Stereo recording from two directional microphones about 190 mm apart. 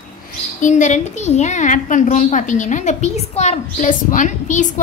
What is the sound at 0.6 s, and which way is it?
A woman's voice, 40° left (ahead or behind).